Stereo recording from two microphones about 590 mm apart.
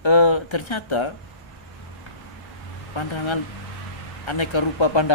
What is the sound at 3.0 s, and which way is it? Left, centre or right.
Speech, left.